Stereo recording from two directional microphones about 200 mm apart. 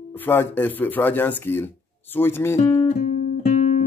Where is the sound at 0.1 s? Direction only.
10° left (ahead or behind).